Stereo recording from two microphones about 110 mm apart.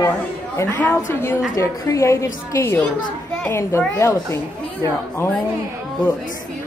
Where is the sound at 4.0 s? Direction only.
30° left (ahead or behind).